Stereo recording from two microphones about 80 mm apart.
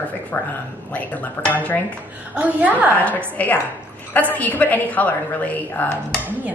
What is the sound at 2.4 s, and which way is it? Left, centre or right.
Speech, centre.